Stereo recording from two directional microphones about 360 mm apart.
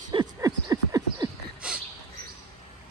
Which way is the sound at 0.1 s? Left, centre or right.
Centre.